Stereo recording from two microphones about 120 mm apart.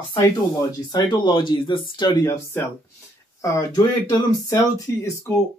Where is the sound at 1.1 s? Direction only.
40° left (ahead or behind).